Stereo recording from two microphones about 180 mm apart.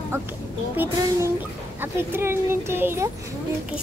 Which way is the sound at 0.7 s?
10° right (ahead or behind).